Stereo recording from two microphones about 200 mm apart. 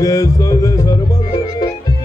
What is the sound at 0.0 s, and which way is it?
Music, 15° left (ahead or behind).